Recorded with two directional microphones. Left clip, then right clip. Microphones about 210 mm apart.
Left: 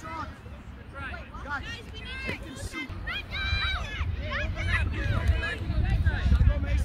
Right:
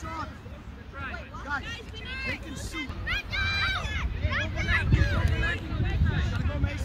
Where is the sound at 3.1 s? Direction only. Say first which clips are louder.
Right 4 dB; 15° right (ahead or behind).